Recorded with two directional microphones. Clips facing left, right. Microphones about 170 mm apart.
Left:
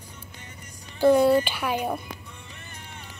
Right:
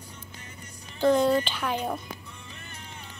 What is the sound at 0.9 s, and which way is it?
Speech, 10° left (ahead or behind).